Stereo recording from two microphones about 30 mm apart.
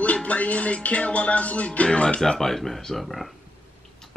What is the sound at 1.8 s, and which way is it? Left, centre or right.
Speech, left.